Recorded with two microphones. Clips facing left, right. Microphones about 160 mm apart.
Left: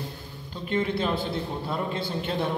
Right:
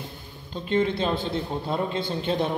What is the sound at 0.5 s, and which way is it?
A man's voice, 25° right (ahead or behind).